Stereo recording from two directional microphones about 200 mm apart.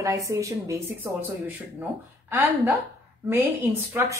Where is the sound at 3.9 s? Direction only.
10° right (ahead or behind).